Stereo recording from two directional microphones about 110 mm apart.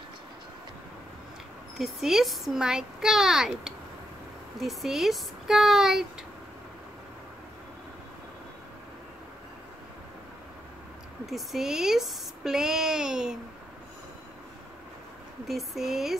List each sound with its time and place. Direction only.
1.8 s a child's voice: 5° right (ahead or behind)
11.2 s a child's voice: 5° right (ahead or behind)
15.4 s a child's voice: centre (ahead or behind)